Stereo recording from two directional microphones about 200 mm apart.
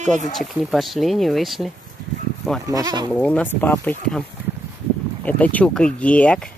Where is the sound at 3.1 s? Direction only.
5° left (ahead or behind).